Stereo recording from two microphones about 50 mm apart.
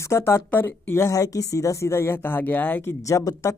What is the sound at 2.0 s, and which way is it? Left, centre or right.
Speech, left.